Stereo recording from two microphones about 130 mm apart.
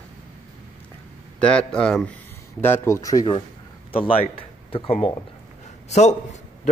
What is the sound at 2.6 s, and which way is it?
Speech, 20° left (ahead or behind).